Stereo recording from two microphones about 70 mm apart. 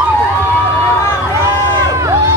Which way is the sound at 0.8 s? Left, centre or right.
Left.